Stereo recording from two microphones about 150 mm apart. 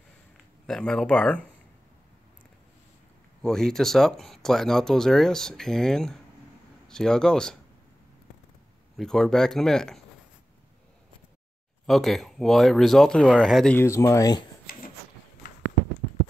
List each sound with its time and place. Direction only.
0.7 s speech: 5° left (ahead or behind)
3.4 s speech: 5° left (ahead or behind)
8.9 s speech: 5° left (ahead or behind)
11.8 s speech: centre (ahead or behind)
13.7 s speech: 20° left (ahead or behind)
14.7 s a sound: 80° left